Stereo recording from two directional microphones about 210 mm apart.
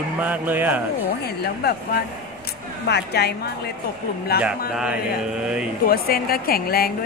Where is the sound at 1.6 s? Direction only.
50° left (ahead or behind).